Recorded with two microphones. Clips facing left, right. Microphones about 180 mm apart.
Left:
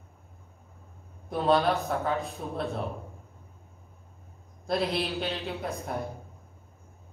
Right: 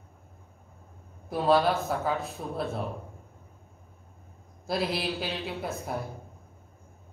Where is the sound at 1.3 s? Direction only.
5° right (ahead or behind).